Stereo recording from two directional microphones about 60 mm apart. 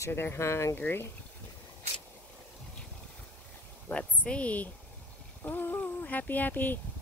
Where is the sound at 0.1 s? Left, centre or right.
Left.